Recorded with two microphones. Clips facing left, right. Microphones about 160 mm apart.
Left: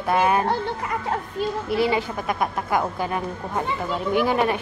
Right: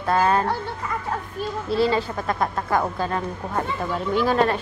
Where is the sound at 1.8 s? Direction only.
15° left (ahead or behind).